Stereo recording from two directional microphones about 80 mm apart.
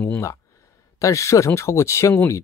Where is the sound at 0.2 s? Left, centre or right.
Left.